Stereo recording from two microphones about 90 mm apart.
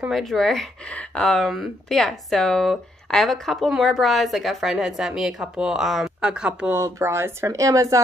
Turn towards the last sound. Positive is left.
turn(degrees=-40)  # may be behind; listen again after turning